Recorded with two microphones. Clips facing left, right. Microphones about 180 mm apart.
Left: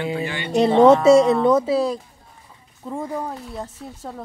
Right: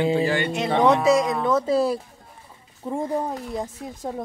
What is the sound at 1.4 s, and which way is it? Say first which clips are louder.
Speech: left 3 dB; 10° left (ahead or behind).